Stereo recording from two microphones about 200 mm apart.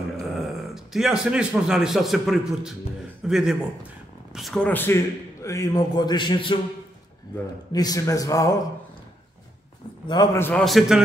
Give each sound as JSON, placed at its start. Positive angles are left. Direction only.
{"t": 0.4, "sound": "a man's voice", "side_deg": 0}
{"t": 7.7, "sound": "a man's voice", "side_deg": 20}
{"t": 10.0, "sound": "a man's voice", "side_deg": 20}